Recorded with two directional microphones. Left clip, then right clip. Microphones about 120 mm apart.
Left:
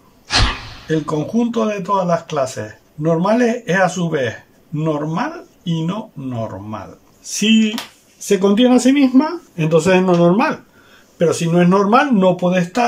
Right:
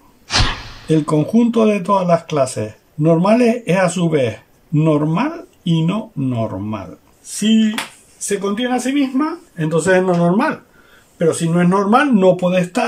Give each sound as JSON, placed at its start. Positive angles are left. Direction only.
{"t": 0.8, "sound": "speech", "side_deg": -15}
{"t": 7.3, "sound": "speech", "side_deg": 20}
{"t": 8.3, "sound": "speech", "side_deg": 40}
{"t": 9.6, "sound": "speech", "side_deg": 15}